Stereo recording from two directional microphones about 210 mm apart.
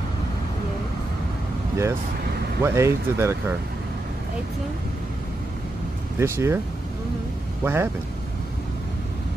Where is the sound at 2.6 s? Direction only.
15° right (ahead or behind).